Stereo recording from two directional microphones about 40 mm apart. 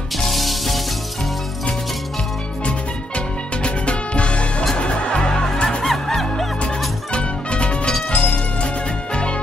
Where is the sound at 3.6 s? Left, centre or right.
Left.